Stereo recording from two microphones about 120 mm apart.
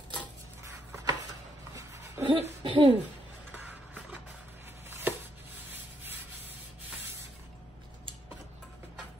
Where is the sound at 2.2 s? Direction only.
45° right (ahead or behind).